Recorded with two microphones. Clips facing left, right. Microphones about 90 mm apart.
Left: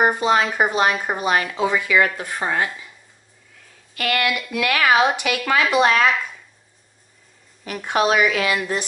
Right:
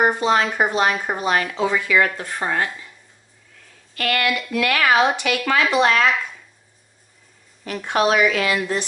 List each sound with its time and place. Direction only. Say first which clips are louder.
0.0 s speech: even; 10° left (ahead or behind)
3.9 s speech: even; 15° left (ahead or behind)
6.1 s a sound: even; centre (ahead or behind)
7.6 s speech: even; 15° left (ahead or behind)